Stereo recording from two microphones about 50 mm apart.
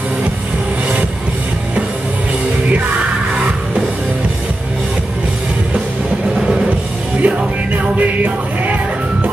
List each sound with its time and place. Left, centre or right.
7.2 s music: right